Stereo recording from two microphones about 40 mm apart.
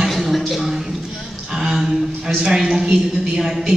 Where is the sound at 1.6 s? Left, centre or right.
Centre.